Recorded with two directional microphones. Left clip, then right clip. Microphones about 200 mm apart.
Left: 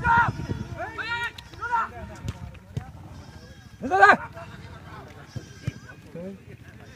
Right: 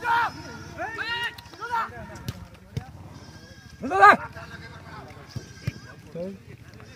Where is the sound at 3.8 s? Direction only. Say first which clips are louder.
Right 1 dB; 35° left (ahead or behind).